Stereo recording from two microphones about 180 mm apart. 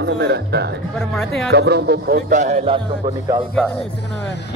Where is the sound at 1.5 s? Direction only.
65° right (ahead or behind); by 3.1 s 35° right (ahead or behind).